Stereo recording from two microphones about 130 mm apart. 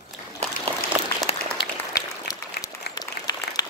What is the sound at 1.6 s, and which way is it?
Applause, 25° left (ahead or behind).